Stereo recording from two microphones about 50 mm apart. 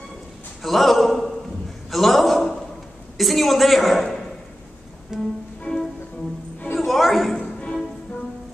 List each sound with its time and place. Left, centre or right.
0.6 s a man's voice: centre
5.1 s music: centre
5.7 s music: left
6.8 s a sound: centre
7.5 s music: centre